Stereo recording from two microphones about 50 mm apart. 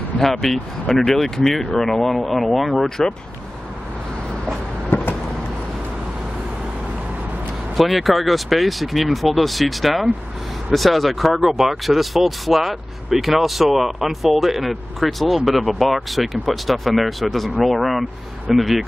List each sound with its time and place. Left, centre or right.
0.4 s speech: centre
4.9 s vehicle: left
7.7 s speech: centre